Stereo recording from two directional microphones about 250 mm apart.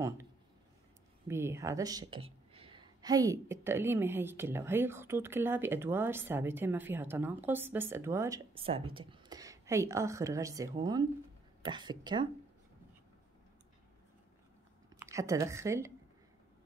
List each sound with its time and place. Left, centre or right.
1.2 s speech: centre
8.5 s speech: right
15.0 s a woman's voice: centre